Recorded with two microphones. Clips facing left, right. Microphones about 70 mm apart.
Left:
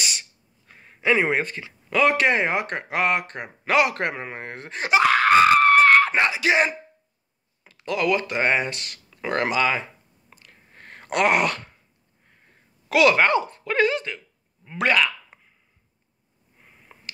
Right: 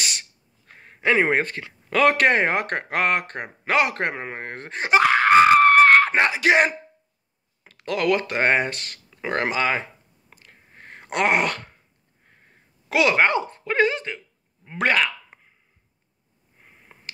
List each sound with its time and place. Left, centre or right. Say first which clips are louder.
0.0 s speech: even; right
10.3 s a sound: right 1 dB; right
12.9 s speech: left 2 dB; right
16.6 s sniff: even; right